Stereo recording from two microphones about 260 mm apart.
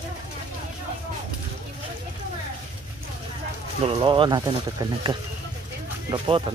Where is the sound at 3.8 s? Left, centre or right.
Right.